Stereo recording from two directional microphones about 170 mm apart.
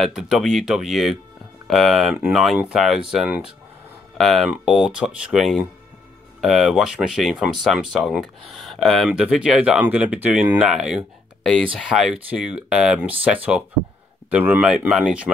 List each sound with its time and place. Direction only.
0.0 s speech: centre (ahead or behind)